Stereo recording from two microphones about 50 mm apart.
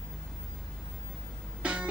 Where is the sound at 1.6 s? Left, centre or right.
Right.